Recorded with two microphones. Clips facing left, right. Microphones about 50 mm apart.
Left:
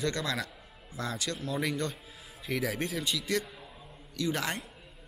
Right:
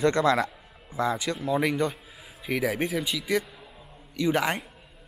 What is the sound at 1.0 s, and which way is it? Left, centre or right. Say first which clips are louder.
Speech: right 8 dB; centre.